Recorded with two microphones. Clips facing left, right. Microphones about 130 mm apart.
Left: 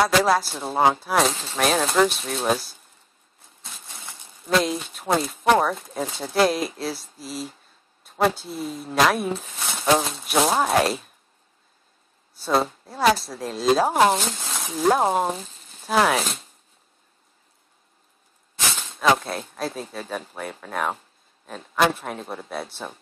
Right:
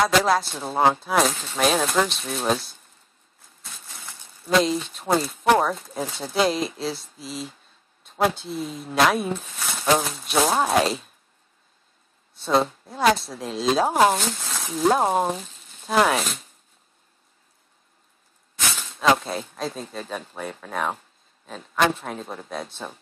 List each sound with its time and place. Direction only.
0.0 s speech: 5° left (ahead or behind)
3.6 s crushing: 25° left (ahead or behind)
4.5 s speech: centre (ahead or behind)
9.6 s a sound: 25° left (ahead or behind)
10.2 s speech: centre (ahead or behind)
12.4 s speech: centre (ahead or behind)
14.3 s speech: 25° left (ahead or behind)
14.6 s speech: centre (ahead or behind)
15.4 s frying: 35° left (ahead or behind)
15.8 s speech: centre (ahead or behind)
18.8 s speech: centre (ahead or behind)